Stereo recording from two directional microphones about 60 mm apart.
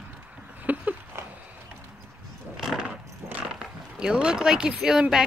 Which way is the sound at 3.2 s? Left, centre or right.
Right.